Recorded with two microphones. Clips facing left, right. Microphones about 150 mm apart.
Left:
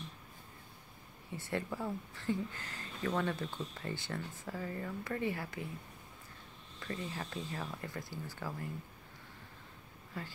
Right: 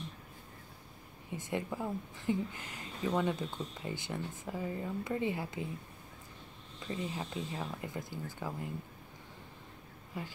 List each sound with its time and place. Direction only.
1.3 s speech: 15° right (ahead or behind)
6.8 s speech: 20° right (ahead or behind)
10.1 s speech: 15° right (ahead or behind)